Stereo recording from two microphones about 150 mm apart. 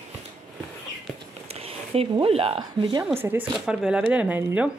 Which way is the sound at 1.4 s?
40° right (ahead or behind).